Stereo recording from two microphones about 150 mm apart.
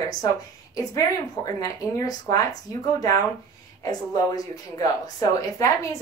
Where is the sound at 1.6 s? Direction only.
25° left (ahead or behind).